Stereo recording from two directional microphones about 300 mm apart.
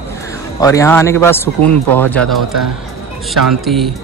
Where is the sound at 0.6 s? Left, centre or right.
Centre.